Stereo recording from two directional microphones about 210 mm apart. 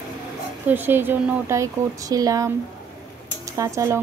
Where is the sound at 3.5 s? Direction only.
15° right (ahead or behind).